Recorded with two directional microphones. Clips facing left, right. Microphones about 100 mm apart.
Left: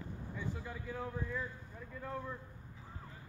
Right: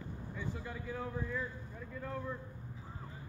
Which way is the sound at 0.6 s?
Centre (ahead or behind).